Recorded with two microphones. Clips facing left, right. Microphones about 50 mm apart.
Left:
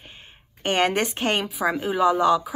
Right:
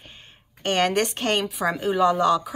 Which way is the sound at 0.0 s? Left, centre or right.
Centre.